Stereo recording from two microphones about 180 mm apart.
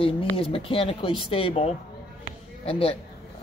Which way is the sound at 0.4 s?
30° left (ahead or behind).